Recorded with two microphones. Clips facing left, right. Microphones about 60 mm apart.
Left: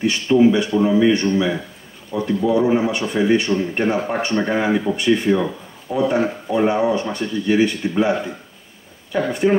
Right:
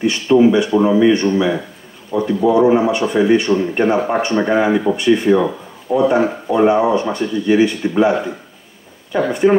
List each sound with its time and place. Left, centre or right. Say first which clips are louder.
0.0 s speech: right 3 dB; centre
2.7 s speech: right 5 dB; centre
5.4 s speech: right 5 dB; right
6.2 s speech: right 5 dB; centre